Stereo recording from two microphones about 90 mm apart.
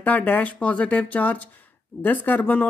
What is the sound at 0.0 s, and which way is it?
Speech, 20° left (ahead or behind).